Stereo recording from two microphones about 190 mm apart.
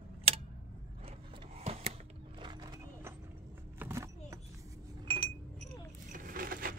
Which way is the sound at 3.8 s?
15° right (ahead or behind).